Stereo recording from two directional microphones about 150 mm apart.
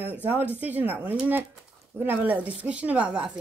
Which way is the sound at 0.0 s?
10° right (ahead or behind).